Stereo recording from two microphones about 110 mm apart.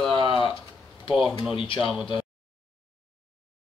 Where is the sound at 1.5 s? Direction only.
55° left (ahead or behind).